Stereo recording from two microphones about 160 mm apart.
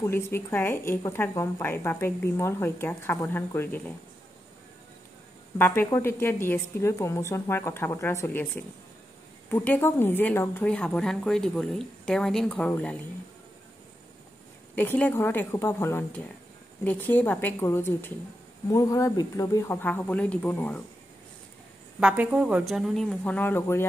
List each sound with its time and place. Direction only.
0.0 s speech: 15° left (ahead or behind)
5.9 s speech: 15° left (ahead or behind)
14.8 s speech: 10° left (ahead or behind)
22.0 s speech: 5° right (ahead or behind); by 23.9 s 15° left (ahead or behind)